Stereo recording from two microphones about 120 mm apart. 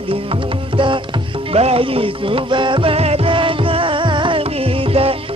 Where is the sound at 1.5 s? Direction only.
55° right (ahead or behind).